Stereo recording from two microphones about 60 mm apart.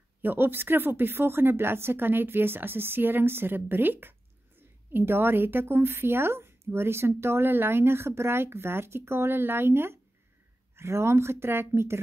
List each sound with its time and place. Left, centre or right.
0.2 s a woman's voice: right